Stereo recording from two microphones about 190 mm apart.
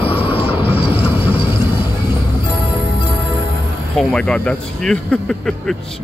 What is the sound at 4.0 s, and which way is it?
Speech, 5° left (ahead or behind).